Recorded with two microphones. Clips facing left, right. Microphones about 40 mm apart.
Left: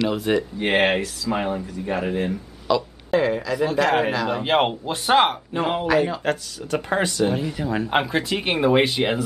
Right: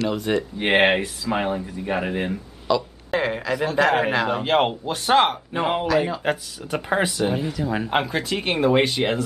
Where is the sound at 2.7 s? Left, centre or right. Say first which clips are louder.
Even; centre.